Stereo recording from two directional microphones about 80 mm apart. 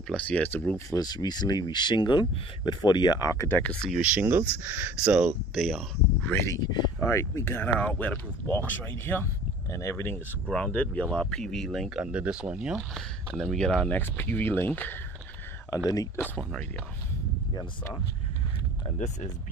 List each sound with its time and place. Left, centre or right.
0.1 s speech: centre
0.7 s speech: left
3.3 s speech: left
3.9 s speech: centre
5.0 s speech: centre
5.5 s speech: centre
6.3 s speech: left
6.6 s speech: left
7.0 s speech: left
10.5 s speech: centre
11.9 s speech: centre
12.7 s speech: centre
13.9 s speech: left